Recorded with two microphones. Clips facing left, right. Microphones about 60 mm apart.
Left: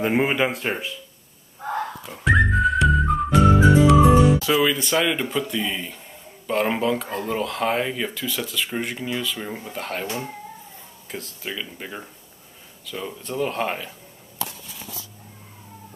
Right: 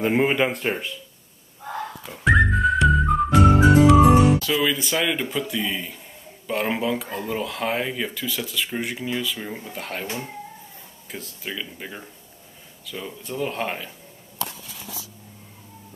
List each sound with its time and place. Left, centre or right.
0.0 s speech: centre
2.0 s music: centre
4.6 s speech: centre
11.1 s speech: centre